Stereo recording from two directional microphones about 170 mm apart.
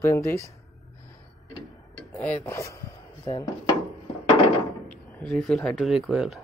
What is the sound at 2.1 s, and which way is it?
Speech, 15° left (ahead or behind).